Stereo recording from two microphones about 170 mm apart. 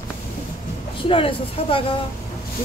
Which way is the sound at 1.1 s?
30° left (ahead or behind).